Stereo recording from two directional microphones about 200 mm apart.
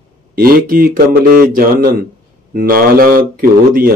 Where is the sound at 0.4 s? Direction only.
45° right (ahead or behind).